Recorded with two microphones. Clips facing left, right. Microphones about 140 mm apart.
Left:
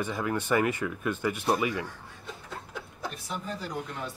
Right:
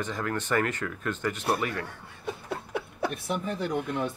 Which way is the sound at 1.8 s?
60° right (ahead or behind).